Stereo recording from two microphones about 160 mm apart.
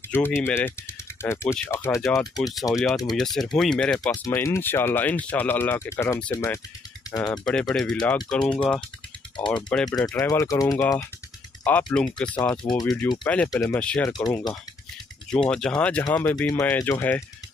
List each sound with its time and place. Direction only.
0.1 s speech: 15° left (ahead or behind)
3.2 s speech: centre (ahead or behind); by 7.3 s 25° left (ahead or behind)
7.4 s speech: 5° left (ahead or behind)
9.8 s speech: 25° left (ahead or behind)
11.6 s speech: 5° left (ahead or behind)
12.6 s speech: 25° left (ahead or behind)
13.2 s speech: 5° left (ahead or behind)
14.0 s speech: 20° left (ahead or behind)
15.3 s speech: 5° left (ahead or behind)